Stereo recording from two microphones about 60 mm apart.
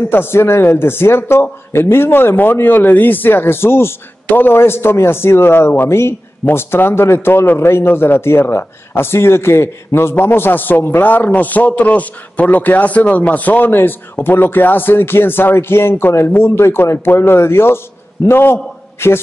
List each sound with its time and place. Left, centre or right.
0.1 s a man's voice: left